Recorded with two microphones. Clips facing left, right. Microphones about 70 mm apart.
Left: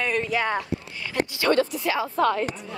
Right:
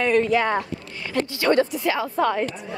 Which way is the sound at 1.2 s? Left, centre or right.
Centre.